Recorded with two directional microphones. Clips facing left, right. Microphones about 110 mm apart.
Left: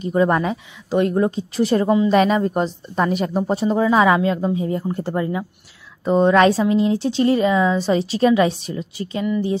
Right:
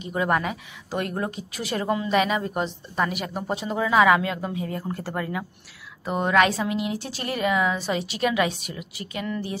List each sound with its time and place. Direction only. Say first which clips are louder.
0.1 s a woman's voice: left 6 dB; 30° left (ahead or behind)